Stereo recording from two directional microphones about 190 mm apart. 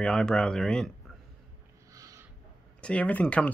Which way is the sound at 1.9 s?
15° right (ahead or behind).